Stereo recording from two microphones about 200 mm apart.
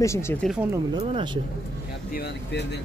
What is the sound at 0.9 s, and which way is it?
Speech, 25° right (ahead or behind).